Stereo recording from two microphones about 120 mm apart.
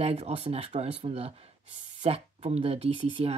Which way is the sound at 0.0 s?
65° right (ahead or behind).